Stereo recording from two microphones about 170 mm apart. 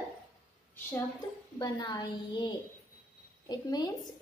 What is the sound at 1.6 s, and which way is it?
A woman's voice, 25° left (ahead or behind).